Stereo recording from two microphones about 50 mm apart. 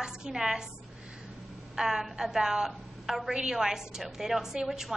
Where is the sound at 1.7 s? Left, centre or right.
Centre.